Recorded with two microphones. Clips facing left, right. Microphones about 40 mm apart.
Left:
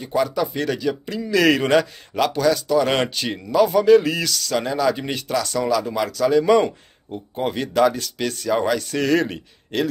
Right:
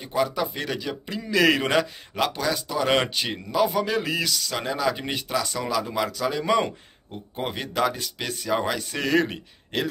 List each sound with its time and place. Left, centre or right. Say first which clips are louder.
0.0 s speech: left 4 dB; centre